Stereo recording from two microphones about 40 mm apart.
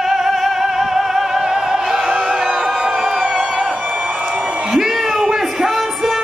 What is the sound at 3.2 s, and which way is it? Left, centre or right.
Music, right.